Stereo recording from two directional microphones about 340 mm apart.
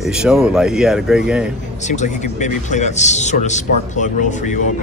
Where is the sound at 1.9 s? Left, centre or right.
Left.